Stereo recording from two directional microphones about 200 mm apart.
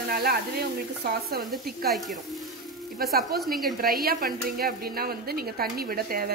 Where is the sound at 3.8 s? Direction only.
45° right (ahead or behind).